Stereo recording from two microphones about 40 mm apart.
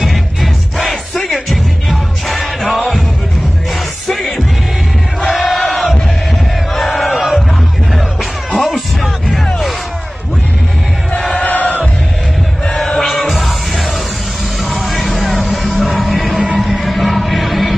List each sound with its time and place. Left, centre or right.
0.0 s music: centre
5.3 s crowd: centre
6.7 s battle cry: centre
8.5 s music: centre
11.3 s choir: left
13.0 s music: centre
14.6 s vehicle: centre
15.5 s music: centre